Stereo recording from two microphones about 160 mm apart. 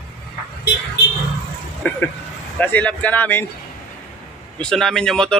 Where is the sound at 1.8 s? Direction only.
10° left (ahead or behind).